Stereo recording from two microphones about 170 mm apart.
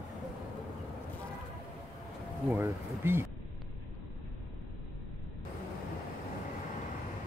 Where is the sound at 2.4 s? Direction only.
15° right (ahead or behind).